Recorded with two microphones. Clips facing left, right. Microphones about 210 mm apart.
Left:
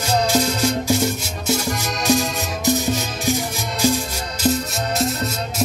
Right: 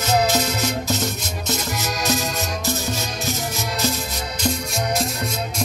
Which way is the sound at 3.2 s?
10° left (ahead or behind).